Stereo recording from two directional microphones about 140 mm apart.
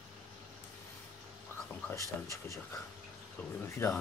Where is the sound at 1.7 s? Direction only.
20° left (ahead or behind).